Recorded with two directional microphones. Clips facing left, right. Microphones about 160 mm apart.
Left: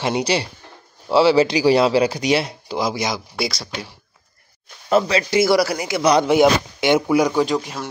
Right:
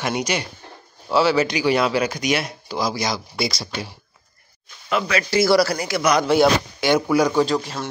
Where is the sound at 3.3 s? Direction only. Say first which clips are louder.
Even; 5° left (ahead or behind).